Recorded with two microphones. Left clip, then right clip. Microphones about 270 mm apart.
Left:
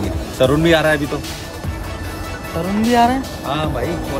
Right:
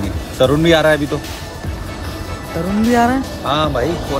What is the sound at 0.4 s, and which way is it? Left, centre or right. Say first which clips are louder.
Speech: right 2 dB; centre.